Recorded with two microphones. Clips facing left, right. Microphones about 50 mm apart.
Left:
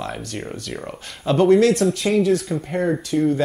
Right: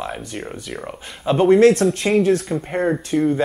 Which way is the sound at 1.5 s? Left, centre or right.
Right.